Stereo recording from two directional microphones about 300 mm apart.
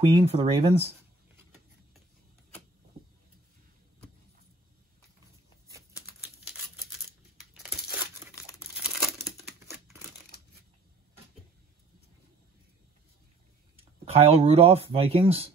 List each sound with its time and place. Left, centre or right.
0.2 s speech: centre
5.7 s a sound: centre
8.3 s crumpling: centre
13.7 s speech: centre